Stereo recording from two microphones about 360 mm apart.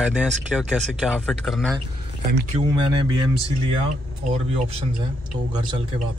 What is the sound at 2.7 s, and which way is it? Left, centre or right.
Speech, centre.